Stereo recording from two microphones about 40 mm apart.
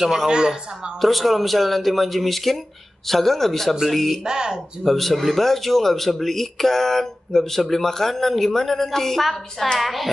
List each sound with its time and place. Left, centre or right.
0.0 s speech: centre
4.2 s speech: centre
4.8 s speech: centre